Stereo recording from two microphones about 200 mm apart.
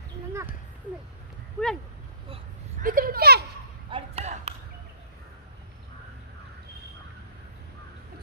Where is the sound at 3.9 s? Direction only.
30° right (ahead or behind).